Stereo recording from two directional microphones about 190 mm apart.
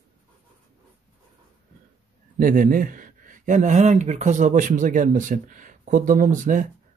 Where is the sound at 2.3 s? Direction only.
45° right (ahead or behind).